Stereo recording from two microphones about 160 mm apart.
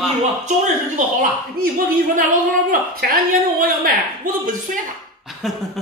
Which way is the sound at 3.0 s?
70° right (ahead or behind).